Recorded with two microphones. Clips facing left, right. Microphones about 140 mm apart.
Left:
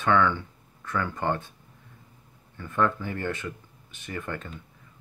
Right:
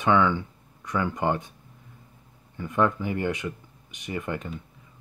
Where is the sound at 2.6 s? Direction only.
15° right (ahead or behind).